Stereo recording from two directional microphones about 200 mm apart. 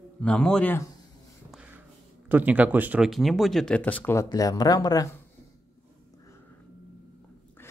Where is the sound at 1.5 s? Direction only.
5° right (ahead or behind).